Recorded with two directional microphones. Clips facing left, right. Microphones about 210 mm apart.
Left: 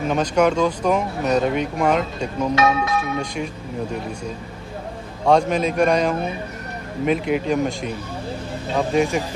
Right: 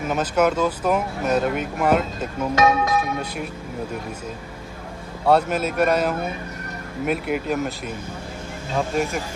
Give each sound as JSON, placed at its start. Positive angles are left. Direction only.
{"t": 0.0, "sound": "speech", "side_deg": -5}
{"t": 2.5, "sound": "speech", "side_deg": -45}
{"t": 5.2, "sound": "speech", "side_deg": -5}